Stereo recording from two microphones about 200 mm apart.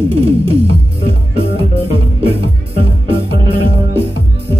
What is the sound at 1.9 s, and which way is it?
Music, 30° right (ahead or behind).